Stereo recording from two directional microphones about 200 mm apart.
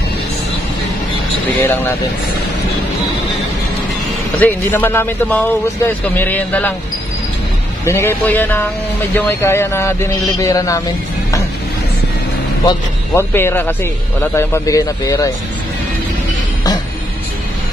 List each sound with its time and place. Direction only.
1.6 s speech: 10° left (ahead or behind)
4.4 s speech: 10° left (ahead or behind)
7.8 s speech: 15° left (ahead or behind)
12.6 s speech: 10° left (ahead or behind)